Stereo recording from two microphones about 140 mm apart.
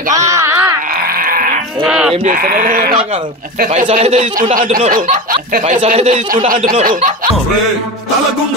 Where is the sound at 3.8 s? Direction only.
50° right (ahead or behind).